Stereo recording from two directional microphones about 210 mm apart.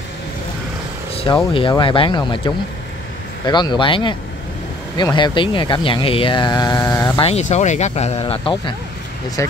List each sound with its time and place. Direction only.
1.5 s speech: 25° left (ahead or behind)
7.2 s speech: 30° left (ahead or behind)
9.4 s speech: 15° left (ahead or behind)